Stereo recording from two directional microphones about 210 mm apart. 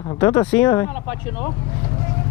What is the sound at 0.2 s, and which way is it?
Speech, 10° left (ahead or behind).